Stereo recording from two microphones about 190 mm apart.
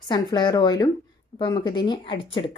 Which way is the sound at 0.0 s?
25° left (ahead or behind).